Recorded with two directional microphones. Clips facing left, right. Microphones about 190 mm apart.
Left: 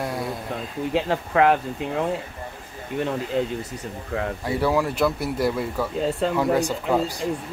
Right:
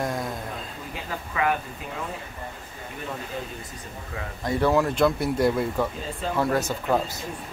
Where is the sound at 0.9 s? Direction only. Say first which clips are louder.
Left 12 dB; 75° left (ahead or behind).